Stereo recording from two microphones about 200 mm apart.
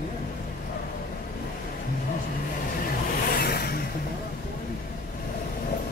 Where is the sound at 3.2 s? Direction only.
50° left (ahead or behind).